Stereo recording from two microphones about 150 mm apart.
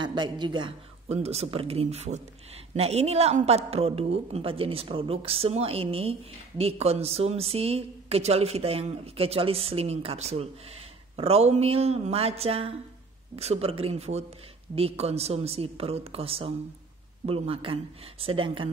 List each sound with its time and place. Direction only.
0.0 s a woman's voice: 30° right (ahead or behind)